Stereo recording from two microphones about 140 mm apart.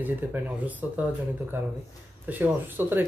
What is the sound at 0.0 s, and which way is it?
Speech, 10° right (ahead or behind).